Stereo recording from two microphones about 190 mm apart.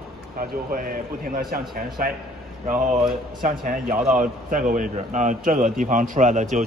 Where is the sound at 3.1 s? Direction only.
45° right (ahead or behind).